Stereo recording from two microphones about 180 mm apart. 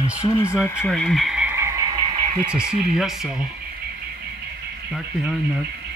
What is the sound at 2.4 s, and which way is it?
Speech, 5° right (ahead or behind).